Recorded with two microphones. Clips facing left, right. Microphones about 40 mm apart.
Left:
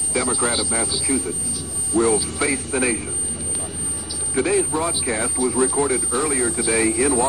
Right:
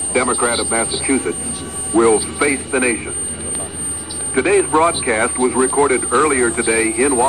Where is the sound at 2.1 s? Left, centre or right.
Right.